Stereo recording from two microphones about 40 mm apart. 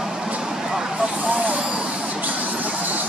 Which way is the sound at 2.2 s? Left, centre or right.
Right.